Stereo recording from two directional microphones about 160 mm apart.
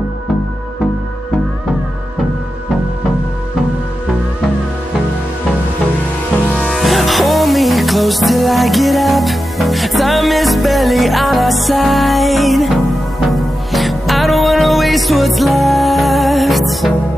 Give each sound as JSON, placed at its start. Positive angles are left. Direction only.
{"t": 6.6, "sound": "music", "side_deg": 0}